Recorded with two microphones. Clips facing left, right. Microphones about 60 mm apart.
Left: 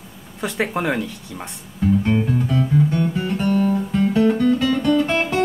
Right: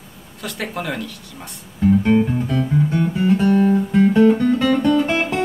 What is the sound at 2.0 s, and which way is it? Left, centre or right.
Music, centre.